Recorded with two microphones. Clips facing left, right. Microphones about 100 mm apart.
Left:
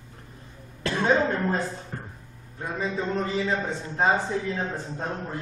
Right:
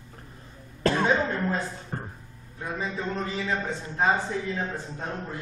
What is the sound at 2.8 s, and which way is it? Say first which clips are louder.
Speech: left 4 dB; 20° left (ahead or behind).